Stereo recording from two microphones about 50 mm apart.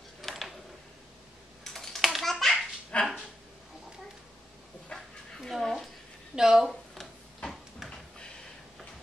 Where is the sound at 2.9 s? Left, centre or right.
Left.